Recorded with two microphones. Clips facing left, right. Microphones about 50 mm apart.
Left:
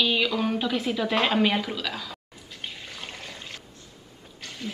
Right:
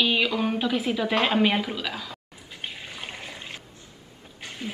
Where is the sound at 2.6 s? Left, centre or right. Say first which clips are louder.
Right 2 dB; centre.